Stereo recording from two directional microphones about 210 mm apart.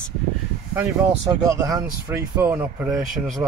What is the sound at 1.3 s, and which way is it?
Speech, 15° right (ahead or behind).